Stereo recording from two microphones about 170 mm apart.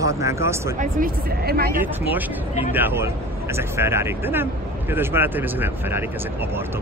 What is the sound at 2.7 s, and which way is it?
Speech, 15° right (ahead or behind).